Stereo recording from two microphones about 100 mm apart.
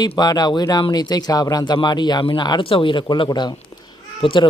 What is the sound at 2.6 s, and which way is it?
Speech, 65° left (ahead or behind).